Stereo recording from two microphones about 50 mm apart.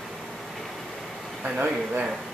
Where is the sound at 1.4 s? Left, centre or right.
Right.